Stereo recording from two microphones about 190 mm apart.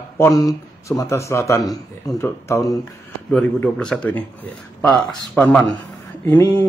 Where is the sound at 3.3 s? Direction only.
5° left (ahead or behind).